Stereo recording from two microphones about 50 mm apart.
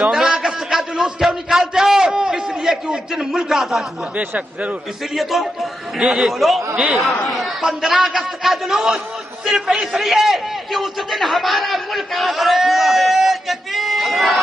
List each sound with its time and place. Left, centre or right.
0.0 s a sound: centre
4.2 s speech: right
5.1 s a man's voice: centre
6.7 s speech: right
7.0 s a man's voice: centre